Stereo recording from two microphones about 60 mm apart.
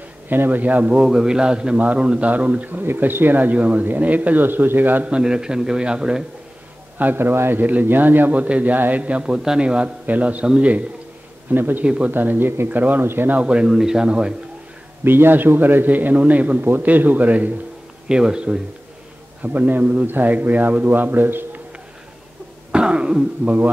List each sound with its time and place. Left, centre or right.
0.3 s a man's voice: right
1.0 s a man's voice: centre
2.8 s a man's voice: right
5.1 s a man's voice: centre
7.0 s a man's voice: right
10.4 s a man's voice: centre
11.5 s a man's voice: right
11.8 s a man's voice: centre
12.1 s a man's voice: right
13.4 s a man's voice: centre
15.0 s a man's voice: right
18.0 s a man's voice: centre
19.4 s a man's voice: right
22.7 s a sound: centre